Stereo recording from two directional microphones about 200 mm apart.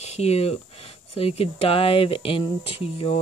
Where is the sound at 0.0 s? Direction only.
30° left (ahead or behind).